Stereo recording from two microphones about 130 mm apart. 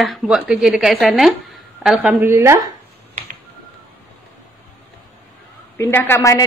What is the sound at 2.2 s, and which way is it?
Speech, 20° right (ahead or behind).